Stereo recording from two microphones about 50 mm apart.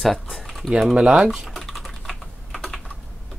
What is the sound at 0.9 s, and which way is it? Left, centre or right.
Speech, centre.